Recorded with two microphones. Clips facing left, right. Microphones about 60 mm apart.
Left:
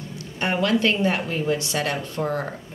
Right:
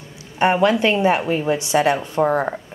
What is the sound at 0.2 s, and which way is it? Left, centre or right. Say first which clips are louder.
A woman's voice: right 8 dB; right.